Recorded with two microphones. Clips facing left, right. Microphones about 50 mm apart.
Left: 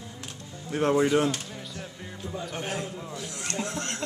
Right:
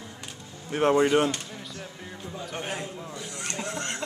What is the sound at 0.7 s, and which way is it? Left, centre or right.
Speech, right.